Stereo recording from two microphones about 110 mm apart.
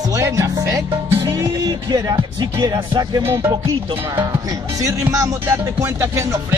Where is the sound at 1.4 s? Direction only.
35° right (ahead or behind).